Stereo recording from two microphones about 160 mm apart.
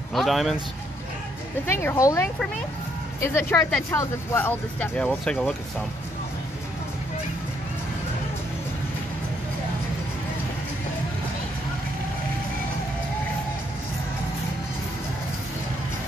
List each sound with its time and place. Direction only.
0.1 s a man's voice: centre (ahead or behind)
1.7 s speech: 15° left (ahead or behind)